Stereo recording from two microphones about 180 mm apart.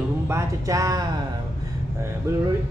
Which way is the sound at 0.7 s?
20° right (ahead or behind).